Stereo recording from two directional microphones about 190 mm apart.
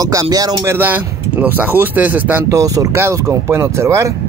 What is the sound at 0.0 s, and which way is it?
Speech, 20° right (ahead or behind).